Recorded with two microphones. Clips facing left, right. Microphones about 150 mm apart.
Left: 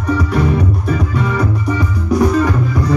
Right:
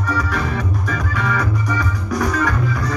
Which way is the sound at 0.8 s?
30° left (ahead or behind).